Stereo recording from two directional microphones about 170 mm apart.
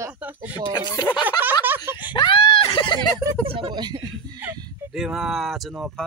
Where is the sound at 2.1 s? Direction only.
30° left (ahead or behind).